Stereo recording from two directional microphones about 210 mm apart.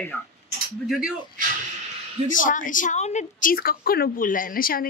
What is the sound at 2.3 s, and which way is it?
A woman's voice, 40° left (ahead or behind).